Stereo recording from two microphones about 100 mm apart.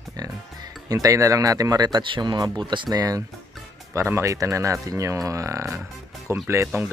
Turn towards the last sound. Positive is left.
turn(degrees=-25)  # may be behind; listen again after turning